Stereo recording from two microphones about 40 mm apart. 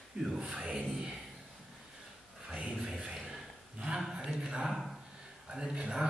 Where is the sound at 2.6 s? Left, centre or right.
Right.